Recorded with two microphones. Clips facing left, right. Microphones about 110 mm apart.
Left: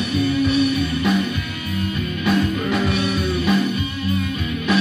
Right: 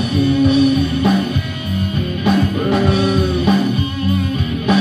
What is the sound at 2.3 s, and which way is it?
Music, 40° right (ahead or behind).